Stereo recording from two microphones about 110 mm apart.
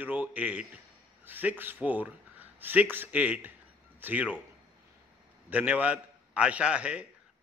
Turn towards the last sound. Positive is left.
turn(degrees=-10)  # may be behind; listen again after turning